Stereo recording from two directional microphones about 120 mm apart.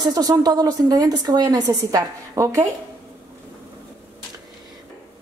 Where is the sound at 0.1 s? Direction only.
30° right (ahead or behind).